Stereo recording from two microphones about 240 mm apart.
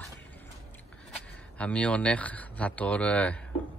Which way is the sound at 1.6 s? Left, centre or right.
Centre.